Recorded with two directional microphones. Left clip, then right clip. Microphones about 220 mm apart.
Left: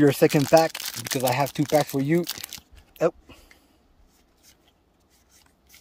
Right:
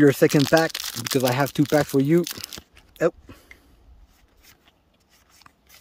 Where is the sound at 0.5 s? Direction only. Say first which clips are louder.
Left 4 dB; 75° right (ahead or behind).